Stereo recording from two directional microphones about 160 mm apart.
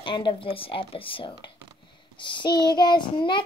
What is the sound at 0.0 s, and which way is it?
Speech, 30° left (ahead or behind).